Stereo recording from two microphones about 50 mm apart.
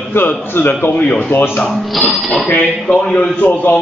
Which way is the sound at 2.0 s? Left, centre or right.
Centre.